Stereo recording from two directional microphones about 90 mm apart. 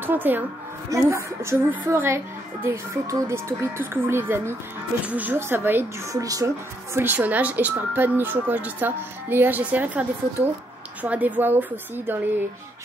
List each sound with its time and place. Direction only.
0.0 s speech: 20° right (ahead or behind)
0.8 s speech: 30° right (ahead or behind)
6.1 s speech: 40° right (ahead or behind); by 12.4 s 25° right (ahead or behind)